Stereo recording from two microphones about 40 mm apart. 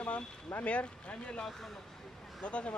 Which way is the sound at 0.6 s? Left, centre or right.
Left.